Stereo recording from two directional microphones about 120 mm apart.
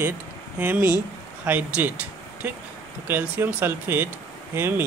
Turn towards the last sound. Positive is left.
turn(degrees=-20)  # may be behind; listen again after turning